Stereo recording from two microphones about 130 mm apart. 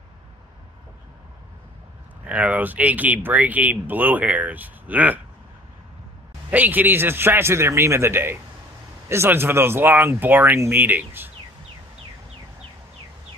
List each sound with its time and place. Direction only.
2.2 s speech: 10° right (ahead or behind)
6.5 s speech: 15° right (ahead or behind)